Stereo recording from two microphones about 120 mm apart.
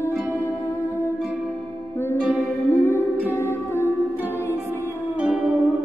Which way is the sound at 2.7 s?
20° left (ahead or behind).